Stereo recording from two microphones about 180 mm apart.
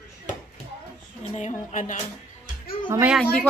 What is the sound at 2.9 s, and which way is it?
Speech, 15° right (ahead or behind).